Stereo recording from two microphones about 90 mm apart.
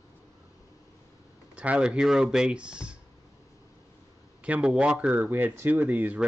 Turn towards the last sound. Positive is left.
turn(degrees=-15)  # may be behind; listen again after turning